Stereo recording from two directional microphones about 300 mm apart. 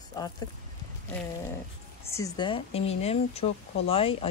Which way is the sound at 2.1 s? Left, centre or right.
Centre.